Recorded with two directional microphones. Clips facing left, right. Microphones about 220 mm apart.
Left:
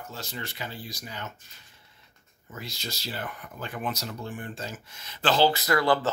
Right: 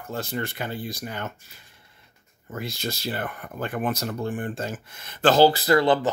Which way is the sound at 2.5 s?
55° right (ahead or behind).